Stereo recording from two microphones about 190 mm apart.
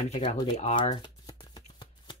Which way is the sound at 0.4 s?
35° left (ahead or behind).